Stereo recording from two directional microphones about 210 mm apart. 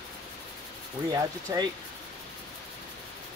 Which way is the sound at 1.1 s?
15° right (ahead or behind).